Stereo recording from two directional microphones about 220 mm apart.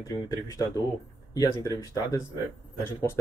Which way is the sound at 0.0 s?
15° left (ahead or behind).